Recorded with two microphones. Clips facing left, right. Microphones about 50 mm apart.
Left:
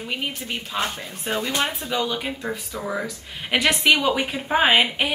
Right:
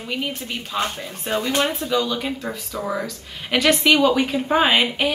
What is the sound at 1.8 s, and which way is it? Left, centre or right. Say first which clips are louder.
Speech: right 3 dB; centre.